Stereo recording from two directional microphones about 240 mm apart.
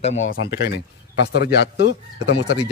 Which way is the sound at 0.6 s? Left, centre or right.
Left.